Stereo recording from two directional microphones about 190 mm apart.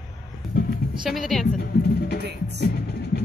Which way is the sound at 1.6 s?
55° left (ahead or behind).